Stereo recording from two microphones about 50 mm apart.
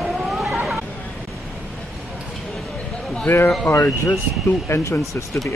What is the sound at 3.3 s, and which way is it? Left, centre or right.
Speech, left.